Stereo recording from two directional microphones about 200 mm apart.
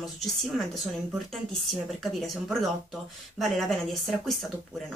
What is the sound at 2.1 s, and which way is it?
Speech, centre (ahead or behind).